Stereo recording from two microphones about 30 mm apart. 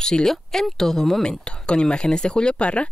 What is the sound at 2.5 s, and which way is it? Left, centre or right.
Speech, left.